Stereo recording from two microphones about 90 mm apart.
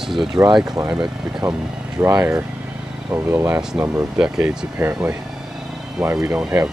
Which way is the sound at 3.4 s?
15° right (ahead or behind).